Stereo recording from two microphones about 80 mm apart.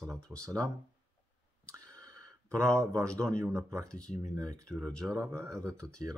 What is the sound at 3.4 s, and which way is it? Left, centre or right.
Speech, right.